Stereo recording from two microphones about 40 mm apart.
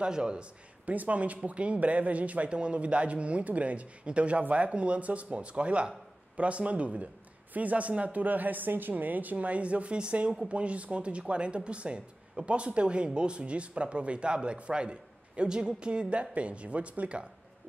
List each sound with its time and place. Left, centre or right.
0.0 s speech: right
0.8 s a man's voice: right